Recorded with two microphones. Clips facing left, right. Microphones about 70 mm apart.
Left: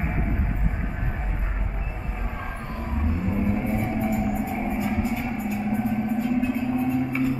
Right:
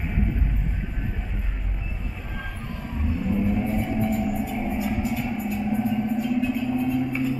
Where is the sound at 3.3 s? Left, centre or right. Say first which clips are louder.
Right 2 dB; left.